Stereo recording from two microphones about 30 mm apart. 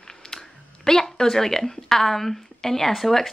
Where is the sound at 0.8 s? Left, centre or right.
Centre.